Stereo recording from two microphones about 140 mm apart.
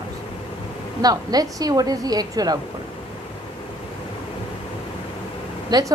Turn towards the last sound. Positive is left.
turn(degrees=-30)  # may be behind; listen again after turning